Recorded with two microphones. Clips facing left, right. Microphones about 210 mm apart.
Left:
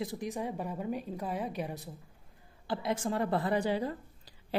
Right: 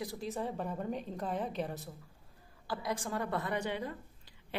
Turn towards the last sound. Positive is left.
turn(degrees=35)  # may be behind; listen again after turning